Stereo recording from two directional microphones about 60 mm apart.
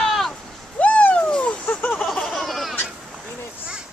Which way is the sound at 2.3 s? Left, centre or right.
Centre.